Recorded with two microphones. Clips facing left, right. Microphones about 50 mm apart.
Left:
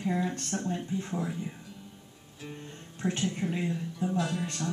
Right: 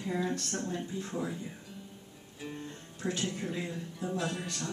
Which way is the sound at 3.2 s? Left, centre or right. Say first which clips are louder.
Left 4 dB; left.